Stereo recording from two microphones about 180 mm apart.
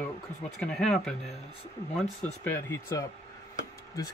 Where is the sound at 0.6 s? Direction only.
Centre (ahead or behind).